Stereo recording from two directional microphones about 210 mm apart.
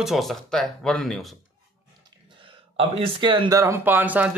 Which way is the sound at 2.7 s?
25° right (ahead or behind).